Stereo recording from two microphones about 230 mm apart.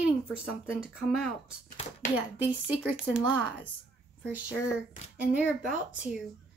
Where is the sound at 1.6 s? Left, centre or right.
Left.